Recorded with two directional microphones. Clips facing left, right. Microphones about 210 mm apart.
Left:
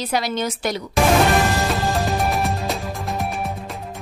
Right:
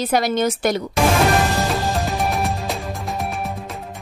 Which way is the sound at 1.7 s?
Centre (ahead or behind).